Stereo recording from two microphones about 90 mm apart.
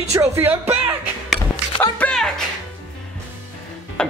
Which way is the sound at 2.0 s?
10° left (ahead or behind).